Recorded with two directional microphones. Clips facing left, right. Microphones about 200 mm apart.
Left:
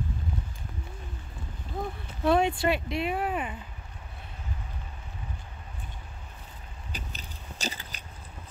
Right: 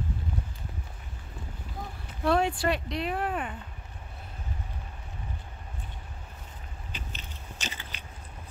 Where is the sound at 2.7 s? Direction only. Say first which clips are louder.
Left 2 dB; 5° left (ahead or behind).